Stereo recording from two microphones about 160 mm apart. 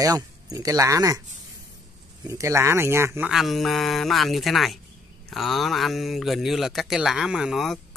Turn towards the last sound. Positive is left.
turn(degrees=0)  # may be behind; listen again after turning